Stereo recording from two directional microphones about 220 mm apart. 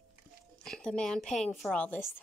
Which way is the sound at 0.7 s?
5° left (ahead or behind).